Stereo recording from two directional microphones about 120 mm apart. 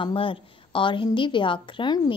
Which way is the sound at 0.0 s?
45° left (ahead or behind).